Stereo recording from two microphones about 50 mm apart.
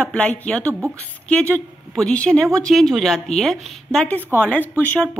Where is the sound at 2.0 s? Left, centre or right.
Centre.